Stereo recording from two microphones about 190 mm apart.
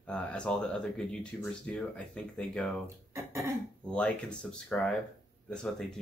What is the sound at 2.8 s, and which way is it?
Speech, 15° right (ahead or behind).